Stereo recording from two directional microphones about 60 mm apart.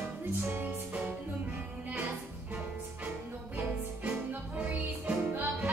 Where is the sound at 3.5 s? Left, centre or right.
Right.